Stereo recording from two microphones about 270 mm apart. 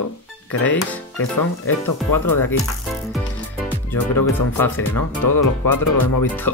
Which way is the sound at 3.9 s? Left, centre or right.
Centre.